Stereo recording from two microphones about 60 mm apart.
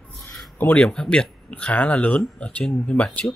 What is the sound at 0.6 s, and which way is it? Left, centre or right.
Speech, left.